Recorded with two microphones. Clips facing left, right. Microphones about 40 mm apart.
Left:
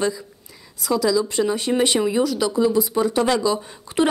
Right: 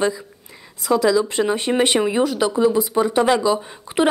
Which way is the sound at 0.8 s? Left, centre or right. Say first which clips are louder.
Right 3 dB; right.